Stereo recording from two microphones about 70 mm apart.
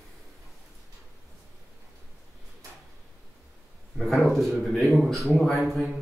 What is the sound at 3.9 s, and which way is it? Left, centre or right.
A man's voice, centre.